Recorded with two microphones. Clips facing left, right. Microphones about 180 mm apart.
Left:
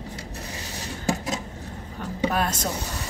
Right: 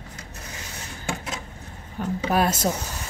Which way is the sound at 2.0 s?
10° right (ahead or behind).